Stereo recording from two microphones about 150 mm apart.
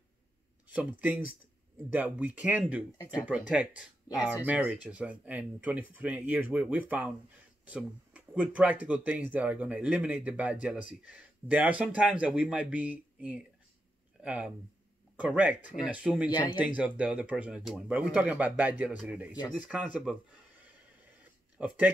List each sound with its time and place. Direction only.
0.7 s speech: 10° right (ahead or behind)
4.8 s speech: 10° right (ahead or behind)
16.3 s speech: 30° left (ahead or behind)
16.5 s speech: 10° right (ahead or behind)
21.2 s a sound: 10° right (ahead or behind)